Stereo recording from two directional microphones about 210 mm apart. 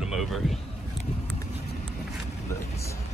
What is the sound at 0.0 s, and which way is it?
Speech, centre (ahead or behind).